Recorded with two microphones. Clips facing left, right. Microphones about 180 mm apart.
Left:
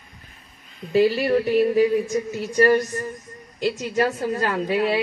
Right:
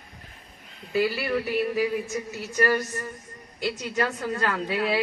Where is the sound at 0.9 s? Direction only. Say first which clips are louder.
Left 7 dB; 25° left (ahead or behind).